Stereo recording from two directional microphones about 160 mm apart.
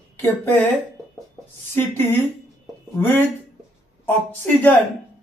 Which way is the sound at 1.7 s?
15° left (ahead or behind).